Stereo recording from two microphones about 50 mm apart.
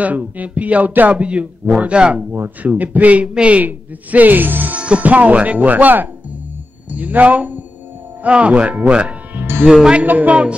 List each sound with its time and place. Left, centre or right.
0.0 s speech: right
2.6 s a man's voice: right
4.7 s a man's voice: right
9.3 s music: right
9.7 s speech: centre
10.0 s speech: right